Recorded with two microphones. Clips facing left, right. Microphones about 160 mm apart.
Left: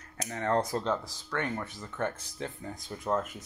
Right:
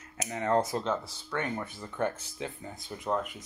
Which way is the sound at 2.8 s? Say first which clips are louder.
Left 1 dB; centre (ahead or behind).